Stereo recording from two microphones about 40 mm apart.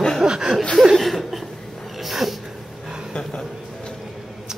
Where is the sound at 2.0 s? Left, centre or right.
Centre.